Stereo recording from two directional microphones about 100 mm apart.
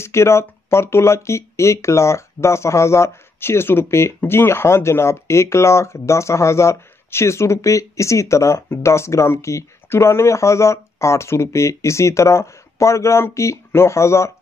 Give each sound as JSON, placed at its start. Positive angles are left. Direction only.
{"t": 0.0, "sound": "speech", "side_deg": 25}